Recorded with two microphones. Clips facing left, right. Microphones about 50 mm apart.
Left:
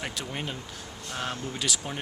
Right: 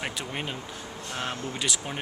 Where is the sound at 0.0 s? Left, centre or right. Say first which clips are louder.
Right 1 dB; centre.